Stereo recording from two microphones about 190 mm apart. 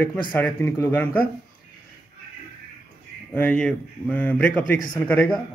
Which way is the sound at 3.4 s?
5° left (ahead or behind).